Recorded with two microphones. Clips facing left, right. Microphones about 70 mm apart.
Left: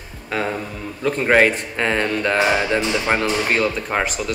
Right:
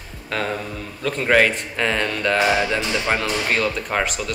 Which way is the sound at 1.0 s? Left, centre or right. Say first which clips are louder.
Left 2 dB; left.